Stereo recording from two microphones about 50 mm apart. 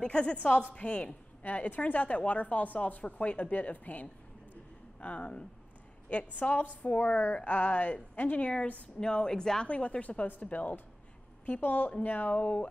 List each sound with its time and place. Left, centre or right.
0.0 s a woman's voice: left
9.7 s a woman's voice: left